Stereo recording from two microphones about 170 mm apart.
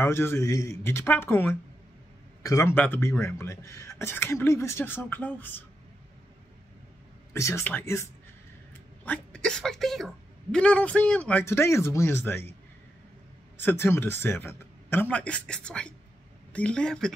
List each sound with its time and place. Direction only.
0.0 s a woman's voice: 15° left (ahead or behind)
7.3 s a woman's voice: 15° left (ahead or behind)
13.6 s a woman's voice: 15° left (ahead or behind)